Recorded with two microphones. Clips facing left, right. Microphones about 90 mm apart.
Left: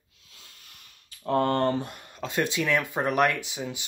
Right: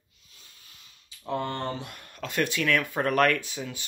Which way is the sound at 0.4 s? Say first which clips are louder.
Left 3 dB; 65° left (ahead or behind).